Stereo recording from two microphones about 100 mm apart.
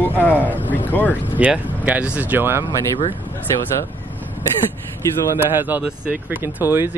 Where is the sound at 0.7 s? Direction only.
20° left (ahead or behind).